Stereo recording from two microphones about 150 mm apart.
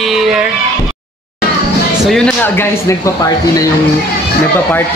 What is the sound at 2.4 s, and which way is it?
Speech, 15° left (ahead or behind).